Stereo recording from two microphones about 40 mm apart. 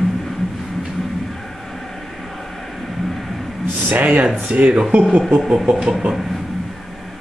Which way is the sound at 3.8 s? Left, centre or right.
Right.